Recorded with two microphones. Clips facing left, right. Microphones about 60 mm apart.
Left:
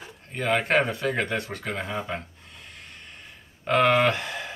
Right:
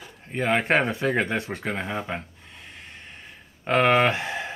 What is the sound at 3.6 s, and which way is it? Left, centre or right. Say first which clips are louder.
Speech: right 1 dB; right.